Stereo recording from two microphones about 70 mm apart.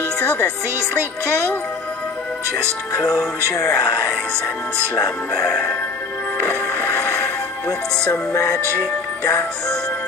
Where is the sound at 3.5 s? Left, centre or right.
Left.